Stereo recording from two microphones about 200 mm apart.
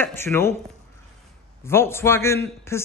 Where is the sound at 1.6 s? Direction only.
10° left (ahead or behind).